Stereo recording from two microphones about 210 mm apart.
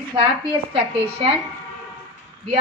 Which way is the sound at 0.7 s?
25° right (ahead or behind).